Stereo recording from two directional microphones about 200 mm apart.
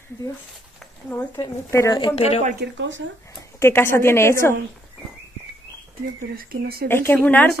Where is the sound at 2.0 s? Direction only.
25° left (ahead or behind).